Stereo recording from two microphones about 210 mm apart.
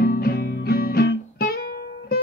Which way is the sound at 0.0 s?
45° left (ahead or behind).